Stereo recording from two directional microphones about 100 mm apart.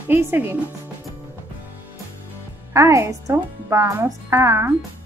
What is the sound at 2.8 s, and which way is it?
A child's voice, 30° right (ahead or behind).